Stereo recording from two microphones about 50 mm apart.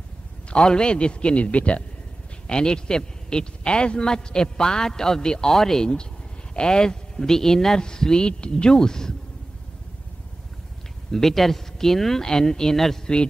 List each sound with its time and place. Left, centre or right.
0.5 s a man's voice: centre
2.4 s speech: centre
11.1 s speech: centre
13.0 s a man's voice: centre